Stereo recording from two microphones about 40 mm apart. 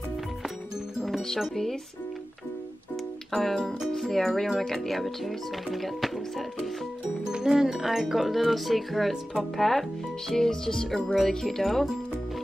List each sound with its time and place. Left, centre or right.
0.9 s music: centre
1.5 s speech: centre
3.3 s speech: centre
3.9 s music: centre
4.5 s speech: centre
7.2 s speech: centre
7.6 s speech: centre
11.1 s speech: centre